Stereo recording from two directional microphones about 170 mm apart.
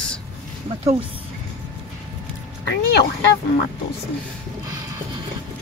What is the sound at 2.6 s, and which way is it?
Speech, 80° left.